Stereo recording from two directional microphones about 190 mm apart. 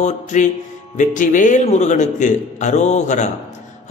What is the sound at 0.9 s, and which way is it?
A man's voice, 45° left (ahead or behind).